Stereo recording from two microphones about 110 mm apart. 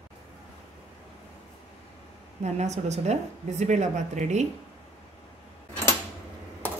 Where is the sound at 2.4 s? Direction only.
90° right.